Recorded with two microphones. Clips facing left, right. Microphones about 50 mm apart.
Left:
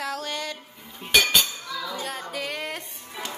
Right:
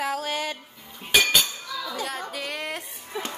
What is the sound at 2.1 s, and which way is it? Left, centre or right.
Music, centre.